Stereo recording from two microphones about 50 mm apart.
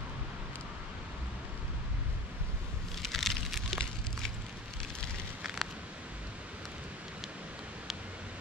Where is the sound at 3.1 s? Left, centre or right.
Centre.